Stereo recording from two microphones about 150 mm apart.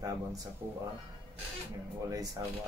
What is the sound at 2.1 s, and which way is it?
Speech, 25° right (ahead or behind).